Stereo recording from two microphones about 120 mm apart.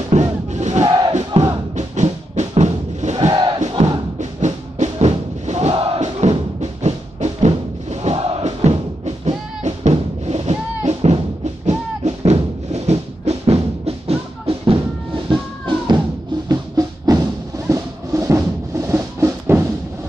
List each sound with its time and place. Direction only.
0.1 s crowd: 75° right (ahead or behind)
0.8 s crowd: 35° right (ahead or behind)
1.8 s music: 75° right (ahead or behind)
3.3 s crowd: 35° right (ahead or behind)
4.2 s music: 80° right; by 5.9 s 60° right (ahead or behind)
5.9 s music: 70° right (ahead or behind)
12.3 s music: 65° right (ahead or behind); by 16.0 s 45° right (ahead or behind)
16.4 s music: 30° right (ahead or behind)